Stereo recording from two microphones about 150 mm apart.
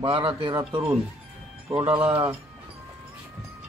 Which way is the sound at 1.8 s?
35° right (ahead or behind).